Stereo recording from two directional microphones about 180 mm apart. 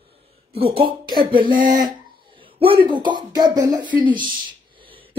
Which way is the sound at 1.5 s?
50° right (ahead or behind).